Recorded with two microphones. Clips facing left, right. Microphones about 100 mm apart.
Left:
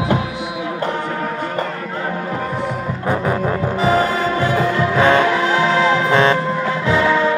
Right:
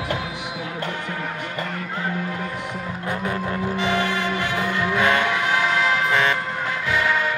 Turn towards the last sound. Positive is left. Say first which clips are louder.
# left 7 dB
turn(degrees=30)  # may be behind; listen again after turning